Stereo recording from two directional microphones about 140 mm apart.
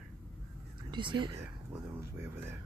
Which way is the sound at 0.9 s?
35° right (ahead or behind).